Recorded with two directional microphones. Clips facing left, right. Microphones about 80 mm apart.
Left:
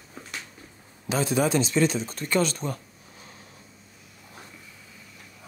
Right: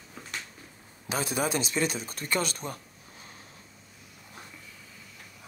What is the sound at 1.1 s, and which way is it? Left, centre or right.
Speech, centre.